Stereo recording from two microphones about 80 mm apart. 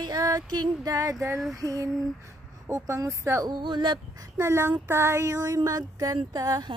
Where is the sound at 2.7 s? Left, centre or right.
Right.